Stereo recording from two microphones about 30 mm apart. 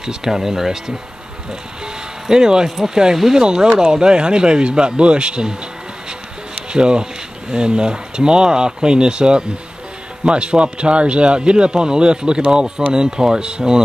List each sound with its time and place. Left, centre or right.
0.0 s speech: centre
2.2 s speech: right
6.7 s speech: right